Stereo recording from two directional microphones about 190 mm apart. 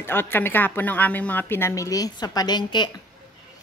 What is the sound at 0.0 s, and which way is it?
A woman's voice, 10° left (ahead or behind).